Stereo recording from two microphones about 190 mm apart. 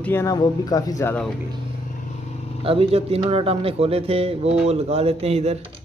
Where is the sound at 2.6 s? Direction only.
30° right (ahead or behind).